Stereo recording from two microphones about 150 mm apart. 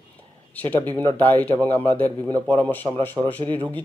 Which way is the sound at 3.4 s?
35° right (ahead or behind).